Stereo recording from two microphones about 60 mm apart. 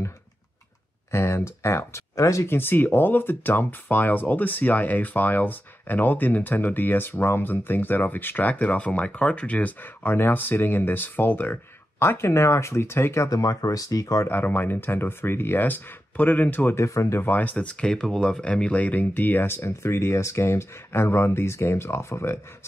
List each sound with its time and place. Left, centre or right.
1.1 s speech: left
2.1 s speech: left
2.4 s speech: left
13.3 s speech: left
14.2 s speech: left
16.7 s speech: left
17.2 s speech: left